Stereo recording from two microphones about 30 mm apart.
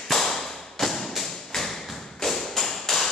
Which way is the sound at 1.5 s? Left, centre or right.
Centre.